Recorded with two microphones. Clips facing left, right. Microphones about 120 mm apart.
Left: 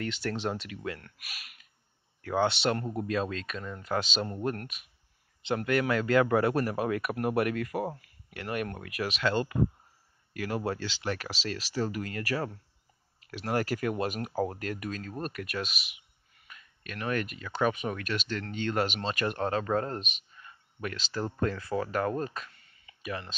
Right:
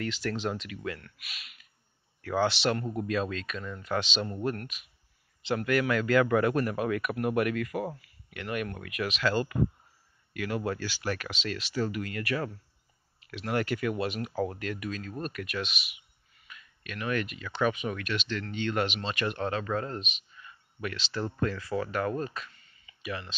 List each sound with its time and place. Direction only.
0.0 s speech: 30° left (ahead or behind)
1.1 s speech: 45° left (ahead or behind)
2.2 s speech: 25° left (ahead or behind); by 23.1 s 50° left (ahead or behind)